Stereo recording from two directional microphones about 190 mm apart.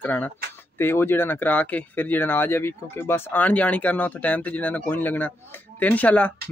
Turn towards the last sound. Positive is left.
turn(degrees=10)  # may be behind; listen again after turning